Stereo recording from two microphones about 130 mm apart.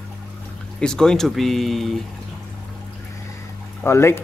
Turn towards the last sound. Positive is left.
turn(degrees=20)  # may be behind; listen again after turning